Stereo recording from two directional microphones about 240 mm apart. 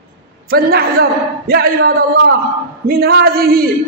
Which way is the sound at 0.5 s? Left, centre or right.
Right.